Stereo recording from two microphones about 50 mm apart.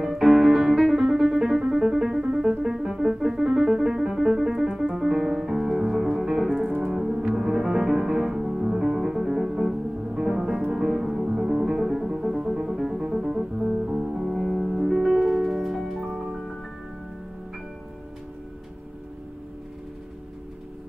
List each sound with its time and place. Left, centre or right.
0.1 s music: centre
16.1 s music: centre